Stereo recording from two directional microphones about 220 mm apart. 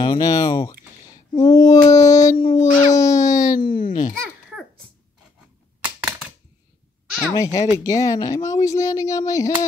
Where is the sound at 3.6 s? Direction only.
40° left (ahead or behind).